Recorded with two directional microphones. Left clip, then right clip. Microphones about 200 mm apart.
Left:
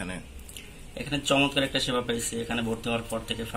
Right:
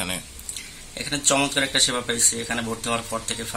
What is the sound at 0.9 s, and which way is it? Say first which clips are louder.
Speech: right 3 dB; 5° right (ahead or behind).